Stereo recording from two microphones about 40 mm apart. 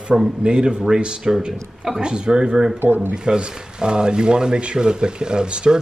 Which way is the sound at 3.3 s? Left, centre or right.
Right.